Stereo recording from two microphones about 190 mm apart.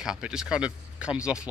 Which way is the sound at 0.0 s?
5° right (ahead or behind).